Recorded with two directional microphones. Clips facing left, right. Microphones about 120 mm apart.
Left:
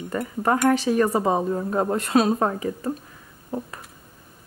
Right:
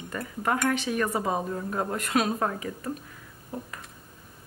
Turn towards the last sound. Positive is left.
turn(degrees=30)  # may be behind; listen again after turning